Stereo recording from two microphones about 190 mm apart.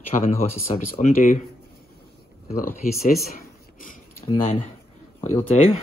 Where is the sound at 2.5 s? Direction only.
45° left (ahead or behind).